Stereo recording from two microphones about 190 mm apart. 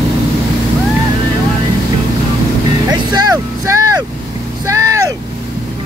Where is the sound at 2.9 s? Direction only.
20° right (ahead or behind).